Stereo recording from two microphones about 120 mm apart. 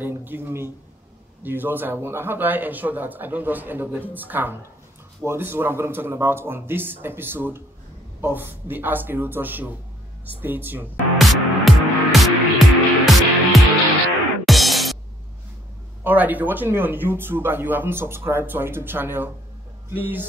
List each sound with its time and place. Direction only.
0.0 s speech: 15° right (ahead or behind)
11.1 s music: centre (ahead or behind)
16.0 s speech: 15° right (ahead or behind)